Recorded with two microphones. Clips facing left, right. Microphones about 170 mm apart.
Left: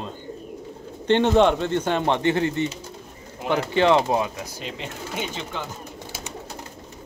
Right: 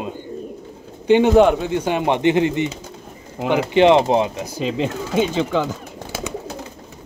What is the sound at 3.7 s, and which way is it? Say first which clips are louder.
Speech: right 6 dB; 20° right (ahead or behind).